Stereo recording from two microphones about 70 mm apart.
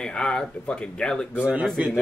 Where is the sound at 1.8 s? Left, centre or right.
Right.